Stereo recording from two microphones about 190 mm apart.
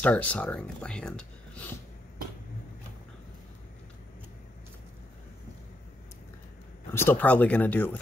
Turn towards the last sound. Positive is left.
turn(degrees=10)  # may be behind; listen again after turning